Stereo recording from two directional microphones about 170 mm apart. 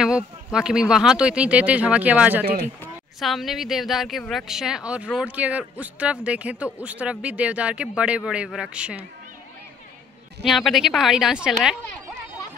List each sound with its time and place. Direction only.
0.0 s speech: 5° right (ahead or behind)
2.4 s speech: 60° right (ahead or behind)
3.2 s speech: centre (ahead or behind)
10.4 s a woman's voice: centre (ahead or behind)